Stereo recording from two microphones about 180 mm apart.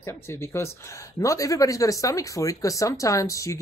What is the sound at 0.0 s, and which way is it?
Speech, 15° left (ahead or behind).